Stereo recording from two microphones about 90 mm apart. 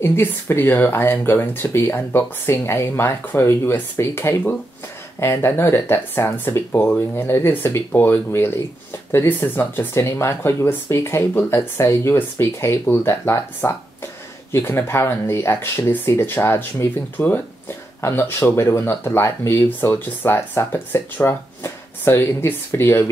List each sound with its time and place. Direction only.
0.0 s speech: 25° left (ahead or behind)